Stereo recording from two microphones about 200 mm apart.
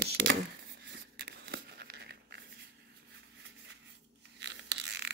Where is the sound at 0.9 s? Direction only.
55° right (ahead or behind).